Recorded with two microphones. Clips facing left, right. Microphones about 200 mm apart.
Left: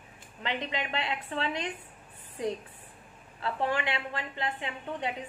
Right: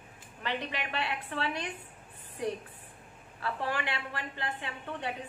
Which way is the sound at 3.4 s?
25° left (ahead or behind).